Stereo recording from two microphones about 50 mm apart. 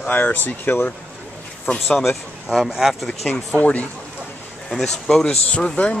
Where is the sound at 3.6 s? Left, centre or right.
Left.